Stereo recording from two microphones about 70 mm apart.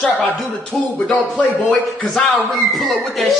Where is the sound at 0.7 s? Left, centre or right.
Centre.